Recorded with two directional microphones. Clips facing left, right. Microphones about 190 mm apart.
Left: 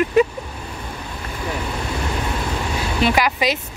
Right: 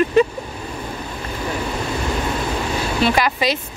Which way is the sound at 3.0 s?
15° left (ahead or behind).